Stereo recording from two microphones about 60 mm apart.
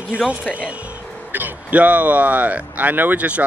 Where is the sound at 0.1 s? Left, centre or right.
Right.